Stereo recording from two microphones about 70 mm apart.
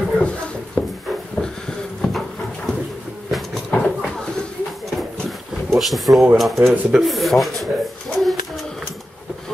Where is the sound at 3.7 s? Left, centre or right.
Left.